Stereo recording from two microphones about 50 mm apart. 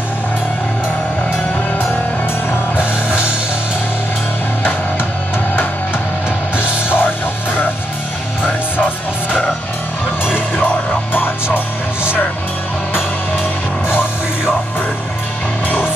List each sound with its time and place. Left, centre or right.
2.5 s music: left
6.5 s music: left
8.5 s music: left
10.3 s music: left